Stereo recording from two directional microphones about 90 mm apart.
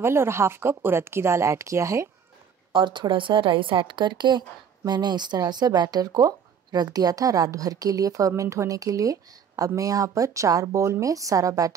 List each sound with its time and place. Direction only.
0.0 s speech: 30° right (ahead or behind)
2.7 s a woman's voice: 60° right (ahead or behind); by 11.7 s 40° right (ahead or behind)